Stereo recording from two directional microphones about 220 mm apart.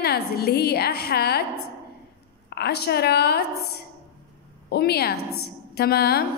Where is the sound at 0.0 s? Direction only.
45° left (ahead or behind).